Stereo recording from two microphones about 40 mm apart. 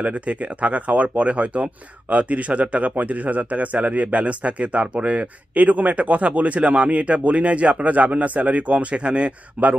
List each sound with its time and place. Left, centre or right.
0.0 s speech: right
8.9 s speech: right
9.6 s speech: right